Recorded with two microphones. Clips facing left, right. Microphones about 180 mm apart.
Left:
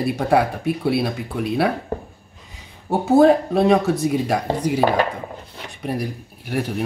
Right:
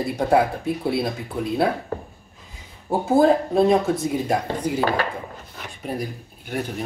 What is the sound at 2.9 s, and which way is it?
Speech, 75° left (ahead or behind).